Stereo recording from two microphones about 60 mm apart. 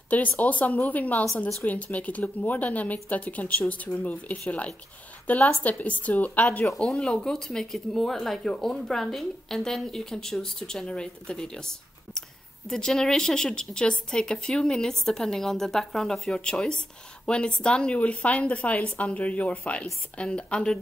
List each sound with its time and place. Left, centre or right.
0.4 s a woman's voice: left
6.8 s a woman's voice: centre